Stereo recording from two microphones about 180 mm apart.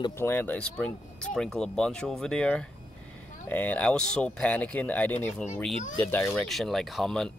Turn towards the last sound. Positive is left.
turn(degrees=5)  # may be behind; listen again after turning